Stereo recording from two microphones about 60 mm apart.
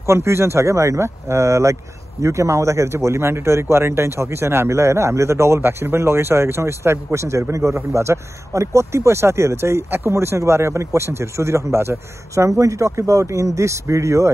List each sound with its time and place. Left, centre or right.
0.0 s speech: right
12.4 s speech: right